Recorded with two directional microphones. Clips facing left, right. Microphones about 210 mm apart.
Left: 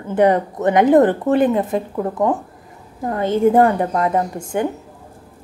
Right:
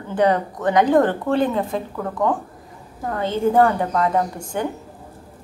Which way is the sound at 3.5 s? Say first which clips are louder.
Left 2 dB; 20° left (ahead or behind).